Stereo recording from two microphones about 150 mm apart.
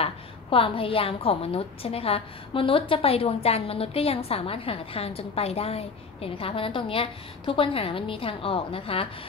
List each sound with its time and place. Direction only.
0.0 s a woman's voice: 35° left (ahead or behind)